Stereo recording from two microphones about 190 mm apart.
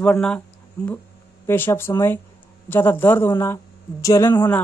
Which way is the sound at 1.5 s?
10° left (ahead or behind).